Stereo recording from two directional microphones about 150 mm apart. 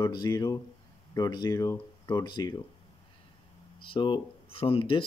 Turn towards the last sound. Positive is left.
turn(degrees=35)  # may be behind; listen again after turning